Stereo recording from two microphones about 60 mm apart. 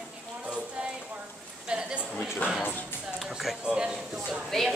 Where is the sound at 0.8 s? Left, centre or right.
Centre.